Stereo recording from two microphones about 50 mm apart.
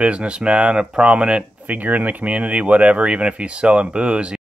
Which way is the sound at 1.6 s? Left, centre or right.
Right.